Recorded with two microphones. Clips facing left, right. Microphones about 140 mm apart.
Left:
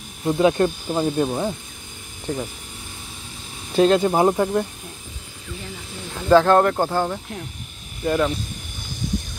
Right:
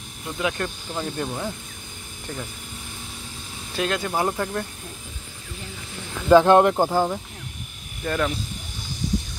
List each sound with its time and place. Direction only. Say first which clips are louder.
0.2 s speech: left 10 dB; 30° left (ahead or behind)
0.9 s speech: left 6 dB; 15° left (ahead or behind)
3.7 s speech: left 9 dB; 30° left (ahead or behind)
6.2 s speech: even; 15° right (ahead or behind)
8.0 s speech: left 4 dB; 15° left (ahead or behind)